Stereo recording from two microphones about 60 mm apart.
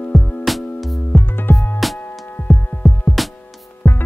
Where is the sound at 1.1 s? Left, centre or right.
Left.